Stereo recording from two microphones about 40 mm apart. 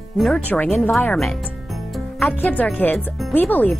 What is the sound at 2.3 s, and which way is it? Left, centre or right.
Speech, left.